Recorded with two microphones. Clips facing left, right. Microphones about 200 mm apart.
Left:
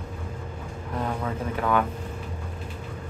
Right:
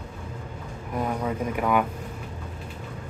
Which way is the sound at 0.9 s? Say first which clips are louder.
Right 2 dB; 15° right (ahead or behind).